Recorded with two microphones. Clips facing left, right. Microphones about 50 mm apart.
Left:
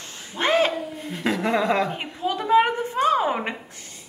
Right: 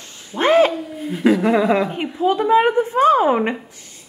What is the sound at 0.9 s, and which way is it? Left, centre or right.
Speech, centre.